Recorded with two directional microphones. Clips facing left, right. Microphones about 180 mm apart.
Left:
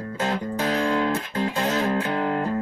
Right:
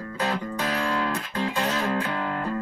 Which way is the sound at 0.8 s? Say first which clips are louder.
Left 5 dB; 20° left (ahead or behind).